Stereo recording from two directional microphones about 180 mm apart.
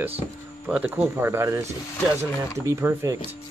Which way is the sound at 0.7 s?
5° right (ahead or behind).